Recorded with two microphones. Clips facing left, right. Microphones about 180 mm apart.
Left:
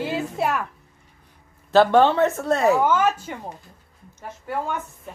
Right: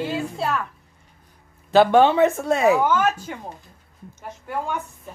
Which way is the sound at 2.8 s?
10° left (ahead or behind).